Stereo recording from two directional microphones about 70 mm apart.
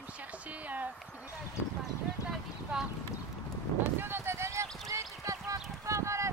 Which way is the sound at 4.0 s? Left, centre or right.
Right.